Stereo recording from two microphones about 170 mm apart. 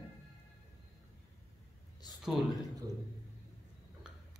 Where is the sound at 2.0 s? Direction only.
25° left (ahead or behind).